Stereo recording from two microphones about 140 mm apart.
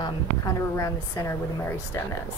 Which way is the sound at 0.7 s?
20° left (ahead or behind).